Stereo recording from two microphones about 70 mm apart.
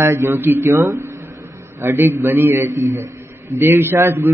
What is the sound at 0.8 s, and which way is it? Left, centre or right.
Speech, right.